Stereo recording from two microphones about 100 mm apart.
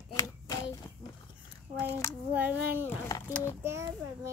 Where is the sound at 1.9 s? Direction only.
30° left (ahead or behind).